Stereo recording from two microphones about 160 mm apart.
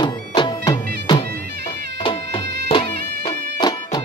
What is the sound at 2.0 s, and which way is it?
Music, 30° left (ahead or behind).